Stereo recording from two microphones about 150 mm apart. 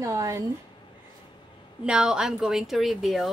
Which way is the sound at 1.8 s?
5° right (ahead or behind).